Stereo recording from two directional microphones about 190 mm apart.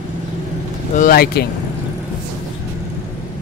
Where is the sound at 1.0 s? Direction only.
50° left (ahead or behind).